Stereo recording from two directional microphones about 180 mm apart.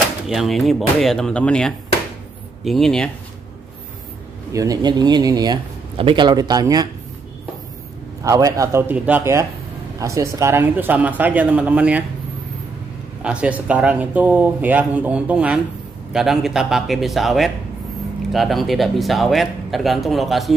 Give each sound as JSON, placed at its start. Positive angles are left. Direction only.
{"t": 0.3, "sound": "a man's voice", "side_deg": 0}
{"t": 4.5, "sound": "speech", "side_deg": -20}
{"t": 8.2, "sound": "speech", "side_deg": -20}
{"t": 13.2, "sound": "a man's voice", "side_deg": -5}